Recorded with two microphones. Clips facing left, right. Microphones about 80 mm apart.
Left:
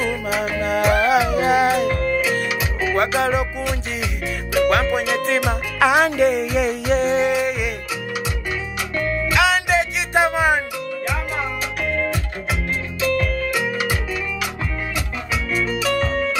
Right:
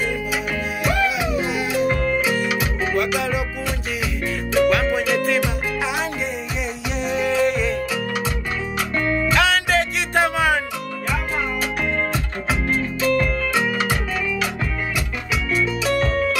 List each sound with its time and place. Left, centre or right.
0.4 s music: left
2.9 s music: left
4.9 s music: left
5.4 s music: left
6.9 s music: left
7.2 s music: left
7.4 s music: centre
9.2 s music: centre